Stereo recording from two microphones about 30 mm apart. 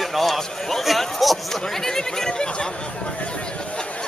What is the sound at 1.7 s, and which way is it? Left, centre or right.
Chatter, centre.